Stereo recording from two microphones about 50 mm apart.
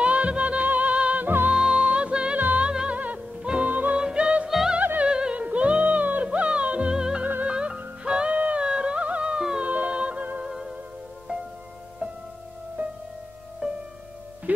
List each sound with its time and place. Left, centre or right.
0.0 s music: right
1.2 s music: right
1.5 s music: centre
4.0 s music: right
4.5 s music: centre
5.0 s music: centre
9.6 s music: right
10.4 s music: centre
13.6 s music: right